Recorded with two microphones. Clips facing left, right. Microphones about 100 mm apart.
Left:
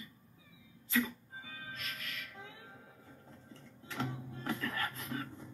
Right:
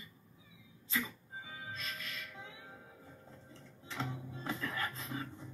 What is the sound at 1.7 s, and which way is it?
Music, 25° right (ahead or behind).